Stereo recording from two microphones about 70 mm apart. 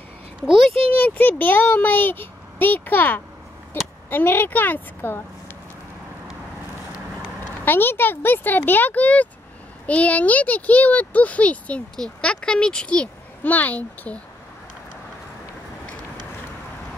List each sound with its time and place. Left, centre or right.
0.9 s speech: left
7.6 s speech: left